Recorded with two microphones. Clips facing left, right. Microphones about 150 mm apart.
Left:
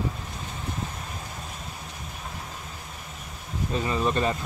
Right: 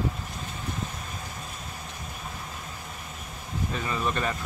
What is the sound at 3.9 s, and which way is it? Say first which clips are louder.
Speech: left 4 dB; 25° left (ahead or behind).